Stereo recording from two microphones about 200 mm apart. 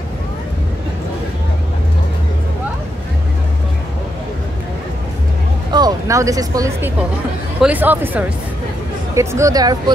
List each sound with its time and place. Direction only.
5.7 s speech: 20° right (ahead or behind)